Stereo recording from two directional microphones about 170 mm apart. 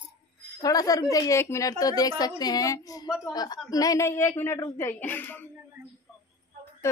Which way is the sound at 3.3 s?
25° left (ahead or behind).